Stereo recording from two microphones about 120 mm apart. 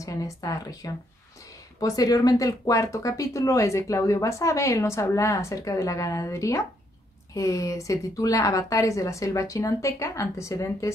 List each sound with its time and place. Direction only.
0.0 s speech: 30° left (ahead or behind)